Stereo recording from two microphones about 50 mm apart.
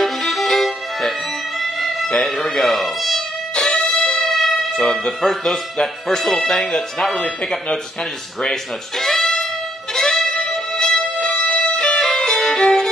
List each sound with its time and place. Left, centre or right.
0.0 s music: centre
3.6 s music: centre
5.4 s speech: centre
7.2 s speech: centre
8.4 s speech: centre
9.9 s music: centre